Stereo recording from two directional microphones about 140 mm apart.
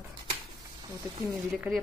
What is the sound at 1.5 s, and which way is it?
Speech, 5° right (ahead or behind).